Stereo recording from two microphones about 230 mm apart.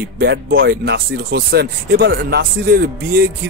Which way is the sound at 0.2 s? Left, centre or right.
Right.